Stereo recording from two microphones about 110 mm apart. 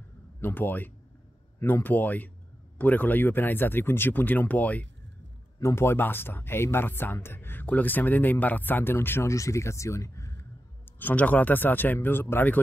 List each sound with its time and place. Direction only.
0.4 s speech: 20° left (ahead or behind)
10.9 s speech: 15° left (ahead or behind)